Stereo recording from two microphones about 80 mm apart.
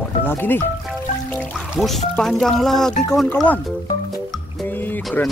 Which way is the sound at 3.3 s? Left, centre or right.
Centre.